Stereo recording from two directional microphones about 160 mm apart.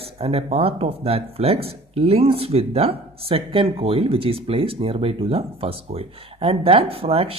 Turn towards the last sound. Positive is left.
turn(degrees=-40)  # may be behind; listen again after turning